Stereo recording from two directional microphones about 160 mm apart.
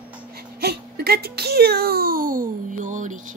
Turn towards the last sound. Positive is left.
turn(degrees=-50)  # may be behind; listen again after turning